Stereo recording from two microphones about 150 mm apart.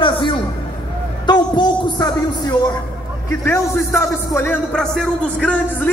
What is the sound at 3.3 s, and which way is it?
Speech, 15° left (ahead or behind).